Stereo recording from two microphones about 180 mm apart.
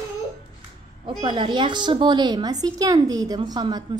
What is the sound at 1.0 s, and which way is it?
A woman's voice, 25° right (ahead or behind).